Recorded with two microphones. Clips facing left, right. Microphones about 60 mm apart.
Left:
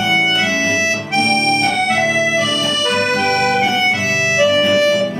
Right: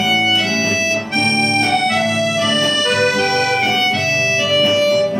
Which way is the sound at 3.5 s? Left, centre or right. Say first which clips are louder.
Left 1 dB; left.